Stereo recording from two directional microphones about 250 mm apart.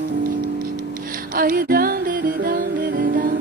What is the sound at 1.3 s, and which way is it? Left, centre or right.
Music, right.